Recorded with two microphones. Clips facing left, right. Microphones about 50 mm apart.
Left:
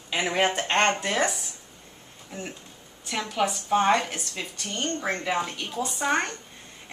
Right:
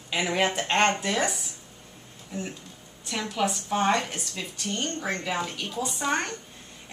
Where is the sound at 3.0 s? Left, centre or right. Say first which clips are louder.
Left 1 dB; centre.